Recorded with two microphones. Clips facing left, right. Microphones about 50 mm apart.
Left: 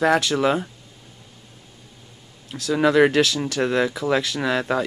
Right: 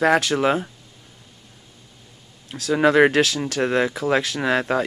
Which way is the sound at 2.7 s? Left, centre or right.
Right.